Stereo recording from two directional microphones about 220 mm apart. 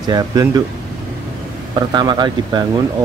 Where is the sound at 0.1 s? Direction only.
15° right (ahead or behind).